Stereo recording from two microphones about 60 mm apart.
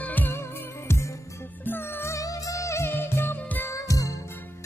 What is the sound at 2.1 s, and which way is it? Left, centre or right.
Music, left.